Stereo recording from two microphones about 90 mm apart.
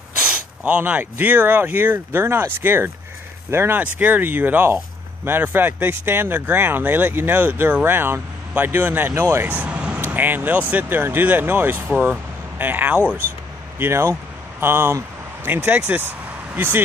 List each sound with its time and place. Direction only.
0.2 s speech: 20° right (ahead or behind)
9.5 s vehicle: 15° right (ahead or behind)
10.1 s speech: 20° right (ahead or behind)